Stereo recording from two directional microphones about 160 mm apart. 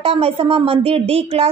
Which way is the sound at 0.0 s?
35° right (ahead or behind).